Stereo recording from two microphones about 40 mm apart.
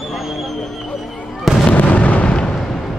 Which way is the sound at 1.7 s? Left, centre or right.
Left.